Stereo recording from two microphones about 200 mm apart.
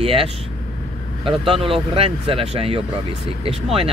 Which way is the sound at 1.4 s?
25° right (ahead or behind).